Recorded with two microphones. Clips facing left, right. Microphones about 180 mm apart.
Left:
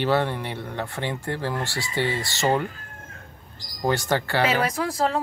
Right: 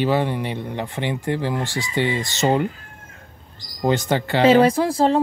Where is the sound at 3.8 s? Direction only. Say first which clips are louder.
Right 3 dB; 20° right (ahead or behind).